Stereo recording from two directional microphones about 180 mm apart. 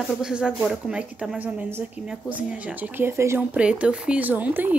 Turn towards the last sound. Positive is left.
turn(degrees=-10)  # may be behind; listen again after turning